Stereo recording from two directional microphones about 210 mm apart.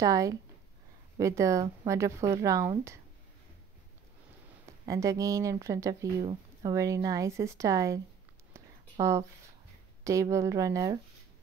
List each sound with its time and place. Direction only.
0.0 s speech: 15° right (ahead or behind)
4.8 s speech: 15° right (ahead or behind)
8.5 s a sound: 15° right (ahead or behind)
10.0 s speech: 15° right (ahead or behind)